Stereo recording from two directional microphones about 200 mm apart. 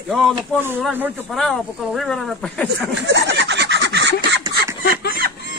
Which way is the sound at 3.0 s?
60° right (ahead or behind).